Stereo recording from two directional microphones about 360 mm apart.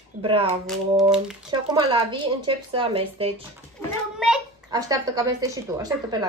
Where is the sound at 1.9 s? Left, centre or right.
Centre.